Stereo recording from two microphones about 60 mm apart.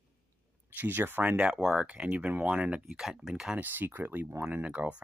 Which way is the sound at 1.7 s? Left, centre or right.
Right.